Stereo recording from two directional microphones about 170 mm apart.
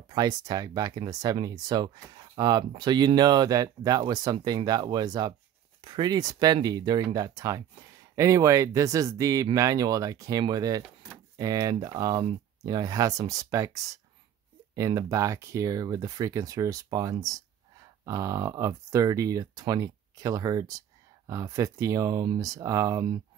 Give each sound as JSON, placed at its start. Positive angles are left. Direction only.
{"t": 0.1, "sound": "speech", "side_deg": -25}